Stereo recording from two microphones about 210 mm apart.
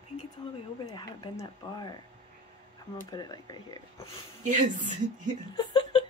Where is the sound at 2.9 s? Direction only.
20° left (ahead or behind).